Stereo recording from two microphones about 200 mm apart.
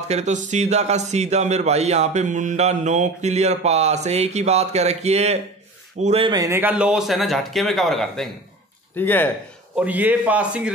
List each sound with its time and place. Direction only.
0.1 s speech: 35° right (ahead or behind); by 9.3 s 10° left (ahead or behind)
9.8 s a man's voice: 10° right (ahead or behind)